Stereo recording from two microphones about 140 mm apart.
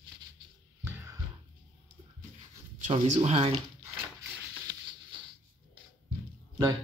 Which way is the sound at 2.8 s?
50° right (ahead or behind).